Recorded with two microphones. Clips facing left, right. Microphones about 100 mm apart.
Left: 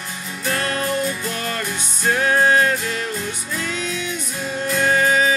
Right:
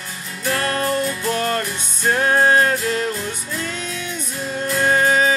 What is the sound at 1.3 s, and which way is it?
Music, 40° right (ahead or behind).